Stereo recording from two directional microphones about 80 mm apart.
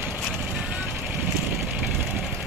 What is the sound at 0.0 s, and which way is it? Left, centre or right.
Vehicle, right.